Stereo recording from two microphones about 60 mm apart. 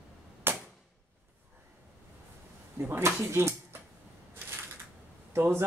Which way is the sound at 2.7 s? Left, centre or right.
Right.